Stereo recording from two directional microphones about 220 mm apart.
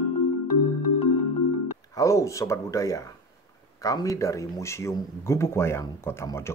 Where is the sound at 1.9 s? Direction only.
15° left (ahead or behind).